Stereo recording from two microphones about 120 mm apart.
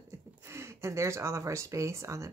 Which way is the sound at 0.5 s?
20° right (ahead or behind).